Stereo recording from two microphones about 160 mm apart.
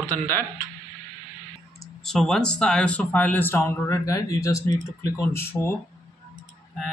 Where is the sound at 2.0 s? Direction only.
5° left (ahead or behind).